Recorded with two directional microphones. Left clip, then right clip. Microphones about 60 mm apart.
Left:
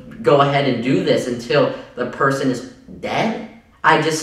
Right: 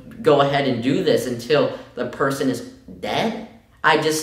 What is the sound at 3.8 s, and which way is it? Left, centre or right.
Speech, left.